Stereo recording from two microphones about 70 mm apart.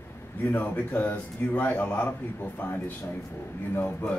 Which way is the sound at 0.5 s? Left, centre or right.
Left.